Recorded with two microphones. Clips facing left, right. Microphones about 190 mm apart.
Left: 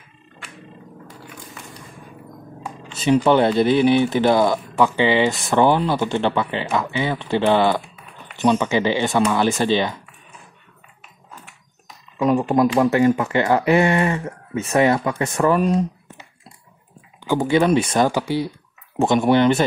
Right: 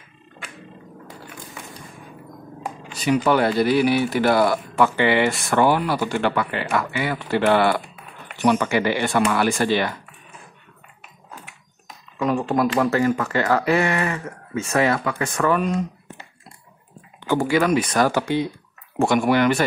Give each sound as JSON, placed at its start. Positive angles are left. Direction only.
{"t": 2.9, "sound": "speech", "side_deg": 25}
{"t": 12.2, "sound": "speech", "side_deg": 20}
{"t": 17.2, "sound": "speech", "side_deg": 15}